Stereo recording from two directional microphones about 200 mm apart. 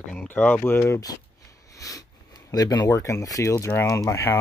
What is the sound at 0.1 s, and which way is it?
Speech, 5° left (ahead or behind).